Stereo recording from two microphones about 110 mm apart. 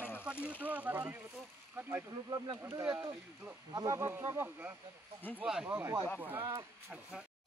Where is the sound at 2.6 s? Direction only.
20° right (ahead or behind).